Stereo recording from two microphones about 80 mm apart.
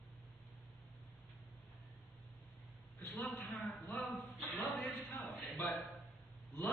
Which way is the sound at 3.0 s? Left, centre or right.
Left.